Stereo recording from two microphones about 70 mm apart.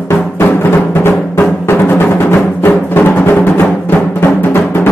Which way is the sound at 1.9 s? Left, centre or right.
Left.